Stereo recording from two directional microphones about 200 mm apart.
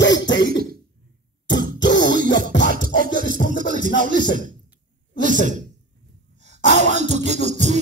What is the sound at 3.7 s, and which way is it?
Music, 40° right (ahead or behind).